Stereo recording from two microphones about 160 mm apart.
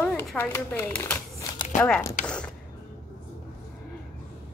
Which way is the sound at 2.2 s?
5° left (ahead or behind).